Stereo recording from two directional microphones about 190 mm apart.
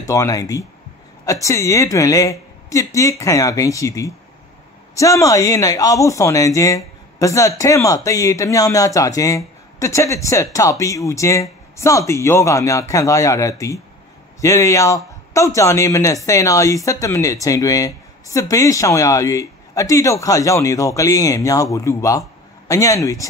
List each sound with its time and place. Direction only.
0.0 s a man's voice: 15° left (ahead or behind)